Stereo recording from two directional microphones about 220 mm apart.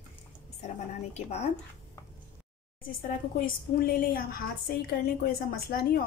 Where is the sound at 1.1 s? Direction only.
30° left (ahead or behind).